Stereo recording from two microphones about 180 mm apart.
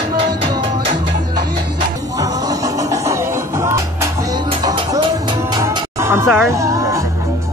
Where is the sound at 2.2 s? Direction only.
20° right (ahead or behind).